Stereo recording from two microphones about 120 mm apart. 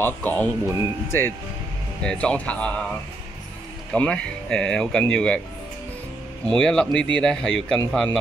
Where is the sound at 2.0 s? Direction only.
10° left (ahead or behind).